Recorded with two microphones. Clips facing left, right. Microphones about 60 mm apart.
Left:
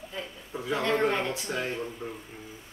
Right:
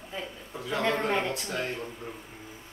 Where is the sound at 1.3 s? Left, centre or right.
Centre.